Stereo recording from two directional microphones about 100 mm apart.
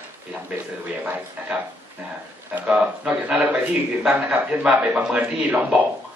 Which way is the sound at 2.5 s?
15° right (ahead or behind).